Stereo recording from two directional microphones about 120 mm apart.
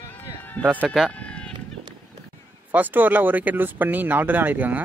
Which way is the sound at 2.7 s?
15° right (ahead or behind).